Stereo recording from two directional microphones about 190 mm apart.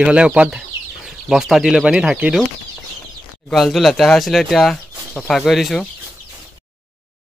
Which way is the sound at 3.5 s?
Centre (ahead or behind).